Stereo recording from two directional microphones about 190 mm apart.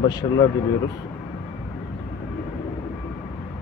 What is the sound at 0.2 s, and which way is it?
Speech, 30° left (ahead or behind).